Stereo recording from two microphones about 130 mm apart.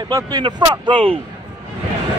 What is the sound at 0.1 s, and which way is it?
Speech, 35° right (ahead or behind).